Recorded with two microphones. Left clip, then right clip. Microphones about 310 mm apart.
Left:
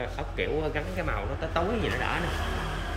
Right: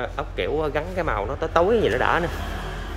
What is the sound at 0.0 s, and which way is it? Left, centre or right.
Speech, centre.